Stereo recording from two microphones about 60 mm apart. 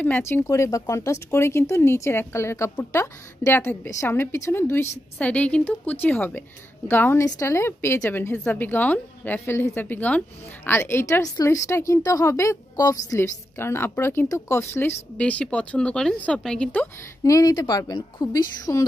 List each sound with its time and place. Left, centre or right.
0.2 s speech: left
0.5 s speech: left
5.2 s speech: left
6.9 s a woman's voice: left
8.5 s a woman's voice: left
13.2 s a woman's voice: left
14.3 s speech: left
15.1 s speech: left
17.2 s a woman's voice: left